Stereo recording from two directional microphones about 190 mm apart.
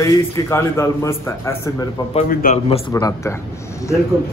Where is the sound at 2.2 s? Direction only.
45° left (ahead or behind).